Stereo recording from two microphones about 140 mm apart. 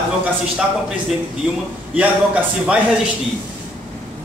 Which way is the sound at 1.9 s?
10° right (ahead or behind).